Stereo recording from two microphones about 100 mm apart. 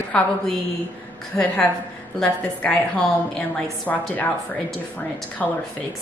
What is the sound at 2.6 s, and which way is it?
A woman's voice, 10° left (ahead or behind).